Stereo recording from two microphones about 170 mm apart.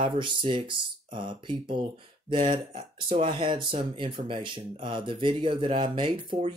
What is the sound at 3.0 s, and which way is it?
Speech, 30° right (ahead or behind).